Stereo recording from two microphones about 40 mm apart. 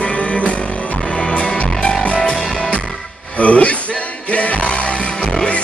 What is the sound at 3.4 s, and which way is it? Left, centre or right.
Music, left.